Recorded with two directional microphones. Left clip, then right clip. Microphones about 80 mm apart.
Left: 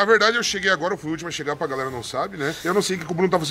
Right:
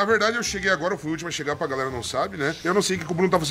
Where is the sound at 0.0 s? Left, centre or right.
Centre.